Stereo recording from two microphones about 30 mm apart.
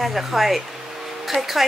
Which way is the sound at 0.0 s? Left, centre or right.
Centre.